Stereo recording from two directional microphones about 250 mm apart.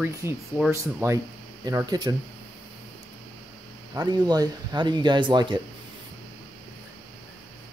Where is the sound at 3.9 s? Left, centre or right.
Centre.